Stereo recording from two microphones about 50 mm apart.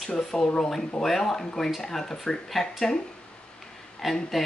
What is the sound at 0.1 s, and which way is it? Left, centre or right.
Speech, centre.